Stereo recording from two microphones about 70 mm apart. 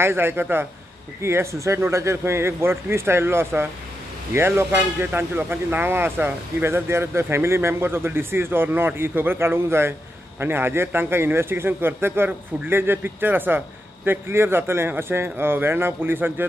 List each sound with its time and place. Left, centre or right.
0.0 s speech: right